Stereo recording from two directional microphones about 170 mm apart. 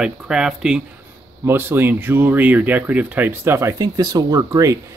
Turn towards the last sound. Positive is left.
turn(degrees=-20)  # may be behind; listen again after turning